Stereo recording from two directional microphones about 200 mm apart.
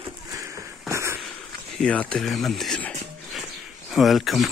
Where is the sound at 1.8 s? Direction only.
5° left (ahead or behind).